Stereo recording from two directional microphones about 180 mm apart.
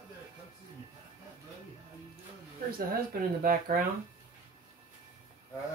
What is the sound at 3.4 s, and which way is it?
Speech, 55° right (ahead or behind).